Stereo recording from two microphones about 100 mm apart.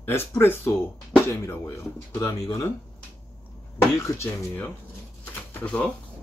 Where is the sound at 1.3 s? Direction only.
25° left (ahead or behind).